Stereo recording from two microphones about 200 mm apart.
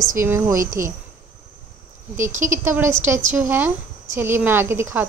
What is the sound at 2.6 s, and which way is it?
A woman's voice, 10° right (ahead or behind).